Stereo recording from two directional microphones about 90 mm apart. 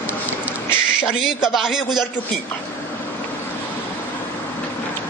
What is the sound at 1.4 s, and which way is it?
Speech, 5° right (ahead or behind).